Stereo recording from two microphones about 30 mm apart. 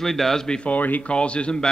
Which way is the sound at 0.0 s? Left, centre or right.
Centre.